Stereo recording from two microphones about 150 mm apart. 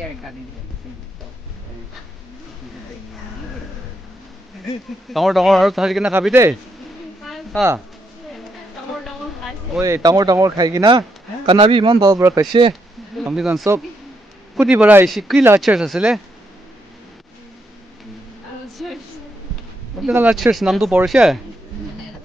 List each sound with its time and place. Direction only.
5.1 s speech: centre (ahead or behind)
7.2 s a sound: centre (ahead or behind)
9.8 s speech: 20° right (ahead or behind)
13.2 s a man's voice: 5° right (ahead or behind)
15.0 s speech: centre (ahead or behind)
18.8 s a sound: centre (ahead or behind)
20.0 s speech: 10° right (ahead or behind)